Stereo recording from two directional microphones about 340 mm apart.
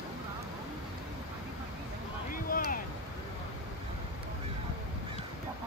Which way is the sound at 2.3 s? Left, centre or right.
Left.